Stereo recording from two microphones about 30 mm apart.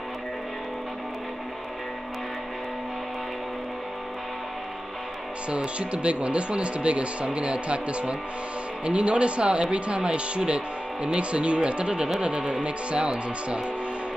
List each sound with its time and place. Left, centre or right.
5.8 s speech: right